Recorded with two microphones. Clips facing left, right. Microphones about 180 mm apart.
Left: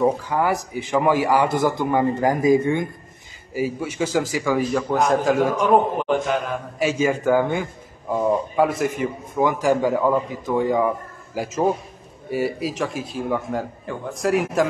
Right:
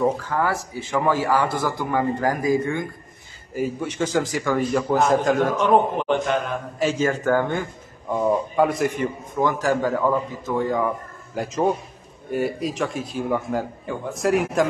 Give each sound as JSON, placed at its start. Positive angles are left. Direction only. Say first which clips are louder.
{"t": 0.0, "sound": "a man's voice", "louder": "left 2 dB", "side_deg": 15}
{"t": 3.5, "sound": "a man's voice", "louder": "left 1 dB", "side_deg": 5}
{"t": 9.4, "sound": "a man's voice", "louder": "left 2 dB", "side_deg": 15}